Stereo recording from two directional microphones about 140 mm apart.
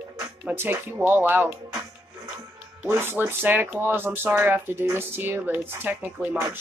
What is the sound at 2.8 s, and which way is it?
Speech, 15° right (ahead or behind).